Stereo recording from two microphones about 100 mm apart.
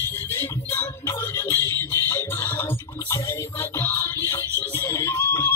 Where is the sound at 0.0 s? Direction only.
20° left (ahead or behind).